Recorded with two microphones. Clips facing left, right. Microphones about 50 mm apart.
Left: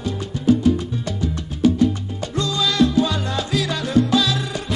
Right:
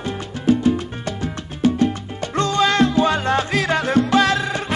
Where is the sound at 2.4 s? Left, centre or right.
Right.